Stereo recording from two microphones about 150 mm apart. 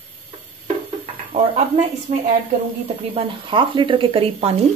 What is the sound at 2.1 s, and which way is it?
Speech, 55° right (ahead or behind).